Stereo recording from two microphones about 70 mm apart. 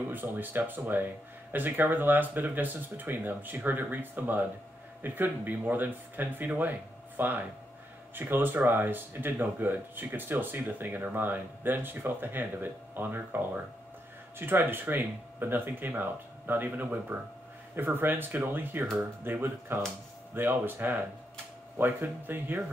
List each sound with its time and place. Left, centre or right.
0.1 s speech: right
14.4 s speech: right